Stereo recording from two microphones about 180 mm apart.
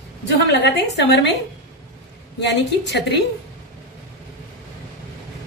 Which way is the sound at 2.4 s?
70° left (ahead or behind).